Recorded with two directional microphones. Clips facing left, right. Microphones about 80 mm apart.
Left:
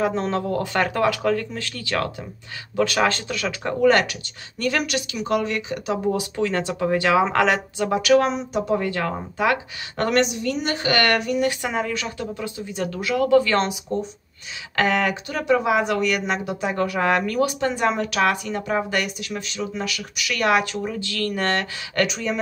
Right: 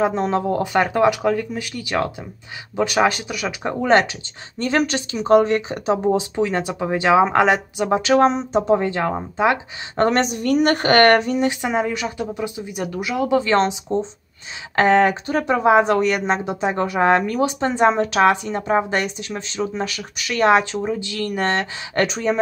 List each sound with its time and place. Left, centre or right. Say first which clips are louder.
0.0 s speech: right 3 dB; centre